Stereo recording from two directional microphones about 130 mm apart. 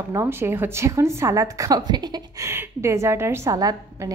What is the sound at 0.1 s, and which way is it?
A woman's voice, 20° right (ahead or behind).